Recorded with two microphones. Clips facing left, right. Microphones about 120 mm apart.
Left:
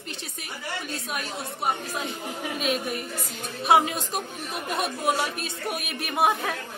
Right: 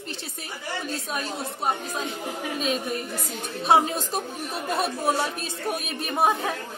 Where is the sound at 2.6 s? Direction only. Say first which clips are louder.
Even; 35° right (ahead or behind).